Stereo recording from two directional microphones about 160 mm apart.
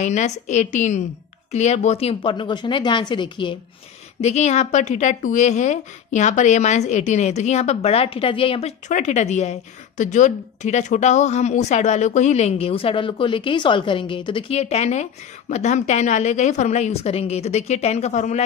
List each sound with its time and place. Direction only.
0.0 s a woman's voice: 45° left (ahead or behind); by 3.5 s 30° left (ahead or behind)
4.2 s a woman's voice: 45° left (ahead or behind)